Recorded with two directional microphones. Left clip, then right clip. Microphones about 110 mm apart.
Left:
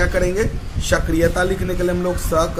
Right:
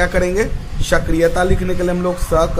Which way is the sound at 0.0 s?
30° right (ahead or behind).